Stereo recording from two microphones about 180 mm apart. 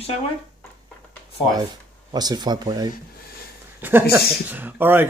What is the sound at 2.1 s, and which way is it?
Speech, 20° right (ahead or behind).